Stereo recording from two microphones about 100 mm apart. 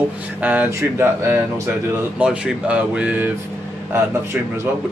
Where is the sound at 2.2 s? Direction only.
10° right (ahead or behind).